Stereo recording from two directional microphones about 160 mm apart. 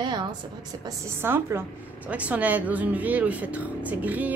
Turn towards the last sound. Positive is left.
turn(degrees=-10)  # may be behind; listen again after turning